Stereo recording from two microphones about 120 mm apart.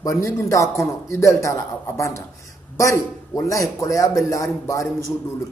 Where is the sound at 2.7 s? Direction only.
25° left (ahead or behind).